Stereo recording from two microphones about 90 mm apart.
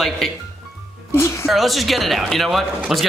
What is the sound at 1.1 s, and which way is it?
Speech, 30° left (ahead or behind).